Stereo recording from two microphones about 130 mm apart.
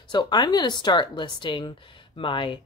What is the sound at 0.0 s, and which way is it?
Speech, 35° left (ahead or behind).